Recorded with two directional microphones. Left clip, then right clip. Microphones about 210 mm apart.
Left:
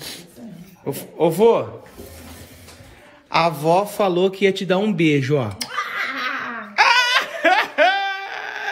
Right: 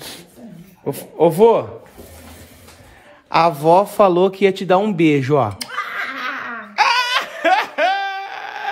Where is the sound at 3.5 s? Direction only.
50° right (ahead or behind).